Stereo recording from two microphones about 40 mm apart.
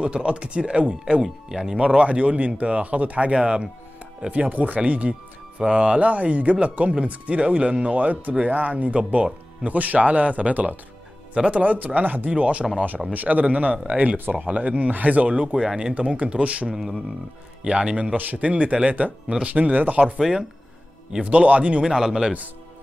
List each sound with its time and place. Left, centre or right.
0.0 s speech: right
1.2 s speech: centre
1.8 s speech: right
4.3 s speech: right
9.7 s speech: right
12.3 s speech: right
15.5 s speech: centre
15.9 s speech: right
16.6 s speech: centre
18.1 s speech: right
20.2 s speech: centre
21.2 s speech: right
21.8 s speech: centre